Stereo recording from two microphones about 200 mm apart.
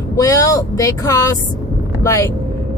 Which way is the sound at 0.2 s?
15° left (ahead or behind).